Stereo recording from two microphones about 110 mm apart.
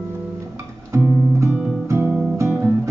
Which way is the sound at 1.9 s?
20° right (ahead or behind).